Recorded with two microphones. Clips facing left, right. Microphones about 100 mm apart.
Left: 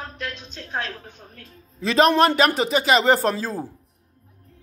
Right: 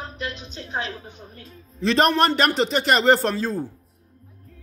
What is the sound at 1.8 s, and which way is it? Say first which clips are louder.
Speech: left 2 dB; 5° left (ahead or behind).